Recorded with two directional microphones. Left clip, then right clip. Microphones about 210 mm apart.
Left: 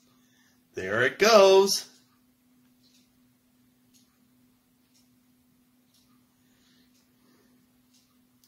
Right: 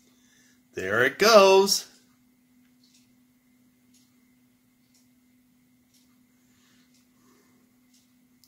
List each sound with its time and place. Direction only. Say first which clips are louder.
0.7 s speech: right 2 dB; 20° right (ahead or behind)